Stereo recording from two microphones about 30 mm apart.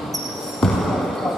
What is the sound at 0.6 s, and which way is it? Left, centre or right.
Basketball bounce, centre.